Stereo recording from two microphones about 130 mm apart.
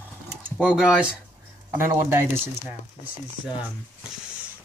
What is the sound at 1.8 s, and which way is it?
Speech, 20° right (ahead or behind).